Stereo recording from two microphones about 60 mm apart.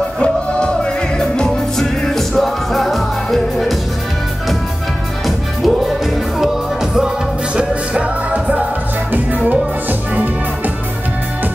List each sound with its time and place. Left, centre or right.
0.2 s music: centre
5.2 s music: centre; by 10.7 s right